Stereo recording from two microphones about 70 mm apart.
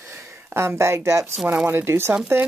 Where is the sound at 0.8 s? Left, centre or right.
Right.